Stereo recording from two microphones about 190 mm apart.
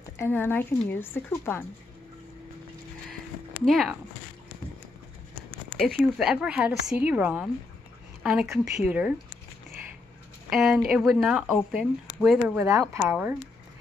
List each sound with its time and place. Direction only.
0.2 s a woman's voice: 10° left (ahead or behind)
3.6 s speech: centre (ahead or behind)
5.8 s a woman's voice: centre (ahead or behind)
10.5 s speech: centre (ahead or behind)